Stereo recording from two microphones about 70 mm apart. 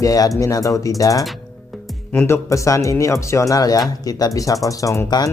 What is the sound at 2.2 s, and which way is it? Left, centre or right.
Speech, left.